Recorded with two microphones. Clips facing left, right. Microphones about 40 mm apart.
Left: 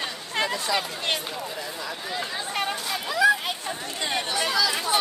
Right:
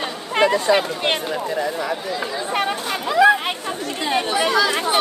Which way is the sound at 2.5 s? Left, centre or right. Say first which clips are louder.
Right 6 dB; right.